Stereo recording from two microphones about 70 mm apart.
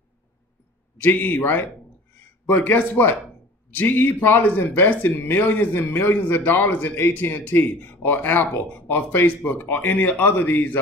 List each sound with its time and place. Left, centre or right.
1.0 s speech: left